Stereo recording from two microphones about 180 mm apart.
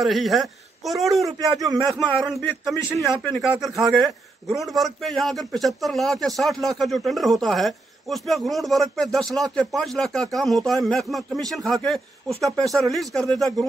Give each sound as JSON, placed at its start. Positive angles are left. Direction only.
{"t": 0.0, "sound": "a man's voice", "side_deg": 0}
{"t": 1.2, "sound": "a man's voice", "side_deg": -20}
{"t": 1.9, "sound": "a man's voice", "side_deg": 0}
{"t": 3.3, "sound": "a man's voice", "side_deg": 0}
{"t": 3.7, "sound": "a man's voice", "side_deg": -20}
{"t": 4.5, "sound": "a man's voice", "side_deg": 0}